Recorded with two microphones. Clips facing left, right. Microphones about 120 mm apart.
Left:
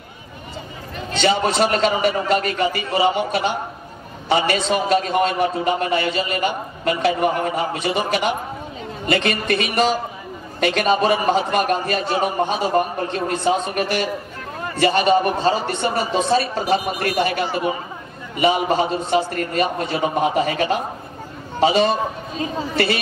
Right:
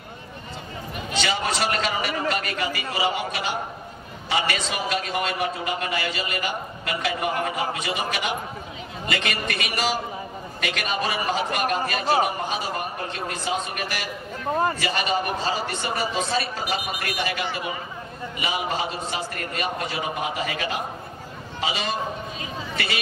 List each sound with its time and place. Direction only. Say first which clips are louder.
1.2 s a man's voice: left 8 dB; 30° left (ahead or behind)